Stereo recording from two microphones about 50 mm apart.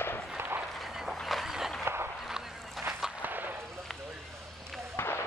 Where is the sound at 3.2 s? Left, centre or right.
Right.